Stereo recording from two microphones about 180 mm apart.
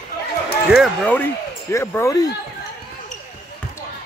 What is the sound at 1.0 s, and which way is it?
Speech, 10° left (ahead or behind).